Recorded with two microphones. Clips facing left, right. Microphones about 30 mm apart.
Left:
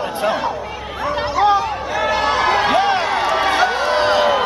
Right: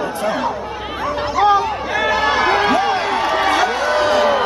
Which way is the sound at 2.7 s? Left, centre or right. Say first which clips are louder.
Left 1 dB; centre.